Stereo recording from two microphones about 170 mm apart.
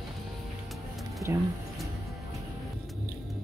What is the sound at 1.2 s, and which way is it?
Speech, 15° right (ahead or behind).